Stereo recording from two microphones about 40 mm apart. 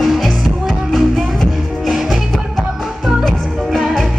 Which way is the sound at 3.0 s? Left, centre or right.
Centre.